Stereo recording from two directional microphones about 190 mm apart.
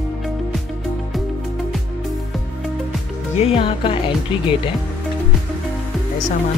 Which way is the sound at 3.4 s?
30° left (ahead or behind).